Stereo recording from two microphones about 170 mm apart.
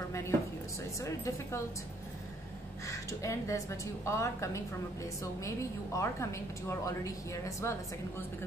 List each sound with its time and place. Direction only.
1.0 s a woman's voice: 15° left (ahead or behind)
2.9 s a woman's voice: 20° left (ahead or behind)